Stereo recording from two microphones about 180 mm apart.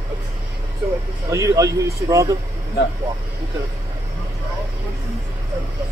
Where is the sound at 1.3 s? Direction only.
15° right (ahead or behind).